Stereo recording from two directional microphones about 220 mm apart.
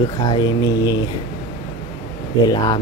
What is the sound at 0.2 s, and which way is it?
Speech, 15° left (ahead or behind).